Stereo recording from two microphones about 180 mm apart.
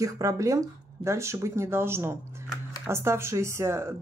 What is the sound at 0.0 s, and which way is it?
Speech, 20° right (ahead or behind).